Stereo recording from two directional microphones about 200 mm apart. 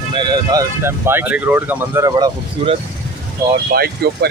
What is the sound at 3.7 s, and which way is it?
Speech, 50° right (ahead or behind).